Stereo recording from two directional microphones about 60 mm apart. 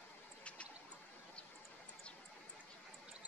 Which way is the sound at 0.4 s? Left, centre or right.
Left.